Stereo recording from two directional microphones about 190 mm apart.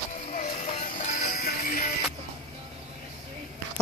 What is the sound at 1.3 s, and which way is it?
Music, 50° left (ahead or behind).